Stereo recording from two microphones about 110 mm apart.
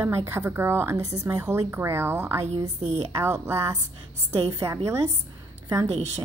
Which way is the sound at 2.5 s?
75° right (ahead or behind).